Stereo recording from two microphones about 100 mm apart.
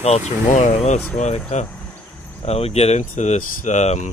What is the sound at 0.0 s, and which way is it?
Speech, 90° left.